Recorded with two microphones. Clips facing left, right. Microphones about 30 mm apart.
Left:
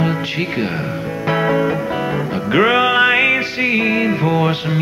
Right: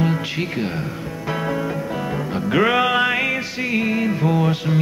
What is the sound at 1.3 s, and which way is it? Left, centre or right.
Music, left.